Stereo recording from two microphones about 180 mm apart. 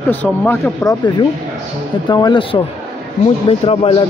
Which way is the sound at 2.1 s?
25° left (ahead or behind).